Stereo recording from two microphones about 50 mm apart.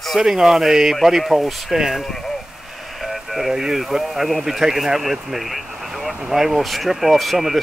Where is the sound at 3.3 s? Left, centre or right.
Centre.